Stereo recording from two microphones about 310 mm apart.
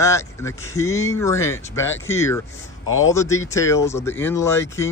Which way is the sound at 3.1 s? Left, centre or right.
Centre.